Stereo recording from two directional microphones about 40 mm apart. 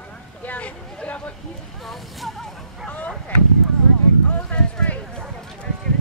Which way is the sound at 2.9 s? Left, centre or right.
Left.